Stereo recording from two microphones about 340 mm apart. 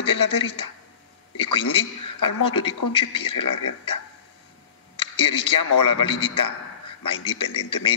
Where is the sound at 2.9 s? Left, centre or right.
Centre.